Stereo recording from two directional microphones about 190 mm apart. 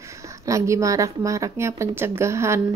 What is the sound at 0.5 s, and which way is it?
A woman's voice, 15° right (ahead or behind).